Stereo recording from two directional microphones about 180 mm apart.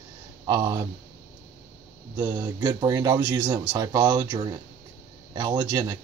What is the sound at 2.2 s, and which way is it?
Speech, 25° right (ahead or behind).